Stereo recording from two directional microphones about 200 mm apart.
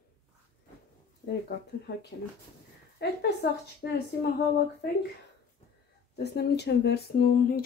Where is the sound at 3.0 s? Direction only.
55° left (ahead or behind).